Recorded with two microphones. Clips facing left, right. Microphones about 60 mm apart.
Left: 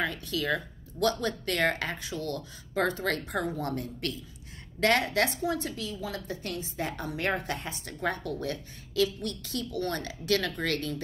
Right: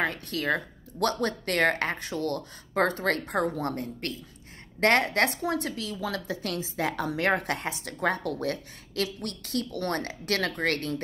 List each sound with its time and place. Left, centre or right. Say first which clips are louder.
0.0 s a woman's voice: right 2 dB; right